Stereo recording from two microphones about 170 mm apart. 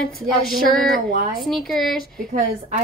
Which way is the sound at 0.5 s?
Centre (ahead or behind).